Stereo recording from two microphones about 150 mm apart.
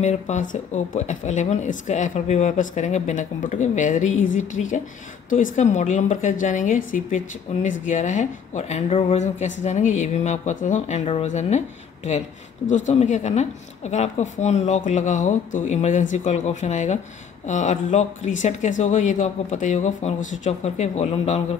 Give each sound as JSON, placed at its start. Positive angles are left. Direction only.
{"t": 0.0, "sound": "speech", "side_deg": 50}